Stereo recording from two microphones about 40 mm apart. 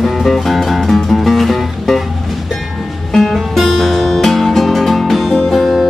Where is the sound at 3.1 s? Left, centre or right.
Centre.